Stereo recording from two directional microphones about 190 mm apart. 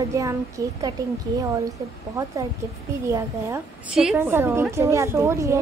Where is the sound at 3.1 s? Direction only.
15° right (ahead or behind).